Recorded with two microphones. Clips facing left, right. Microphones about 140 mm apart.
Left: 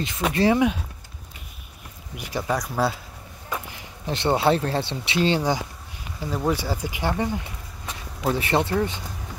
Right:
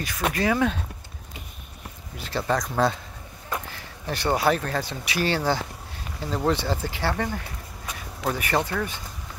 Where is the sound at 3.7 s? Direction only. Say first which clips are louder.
Left 2 dB; 15° left (ahead or behind).